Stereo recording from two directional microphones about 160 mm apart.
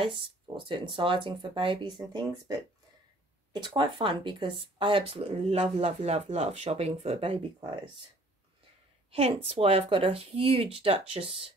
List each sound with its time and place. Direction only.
0.7 s speech: 30° right (ahead or behind)
3.5 s speech: 30° right (ahead or behind)
9.1 s speech: 35° right (ahead or behind)